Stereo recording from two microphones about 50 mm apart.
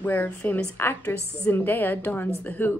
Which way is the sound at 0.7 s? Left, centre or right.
Left.